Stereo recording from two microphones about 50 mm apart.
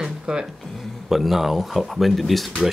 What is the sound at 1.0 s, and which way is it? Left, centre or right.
Speech, centre.